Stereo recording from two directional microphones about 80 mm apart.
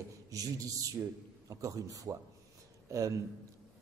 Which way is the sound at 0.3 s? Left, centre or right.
Right.